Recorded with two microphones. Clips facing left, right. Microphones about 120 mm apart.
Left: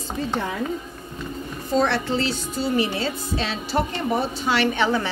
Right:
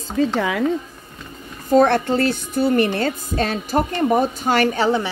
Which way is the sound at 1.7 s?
50° right (ahead or behind).